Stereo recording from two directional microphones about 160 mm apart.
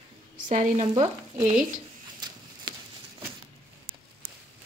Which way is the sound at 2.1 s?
25° right (ahead or behind).